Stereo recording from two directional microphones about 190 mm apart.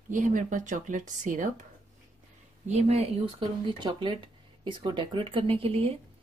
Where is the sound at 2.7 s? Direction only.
35° right (ahead or behind).